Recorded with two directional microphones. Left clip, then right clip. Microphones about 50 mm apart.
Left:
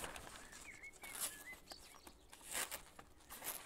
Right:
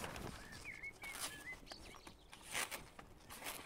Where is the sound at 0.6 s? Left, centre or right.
Left.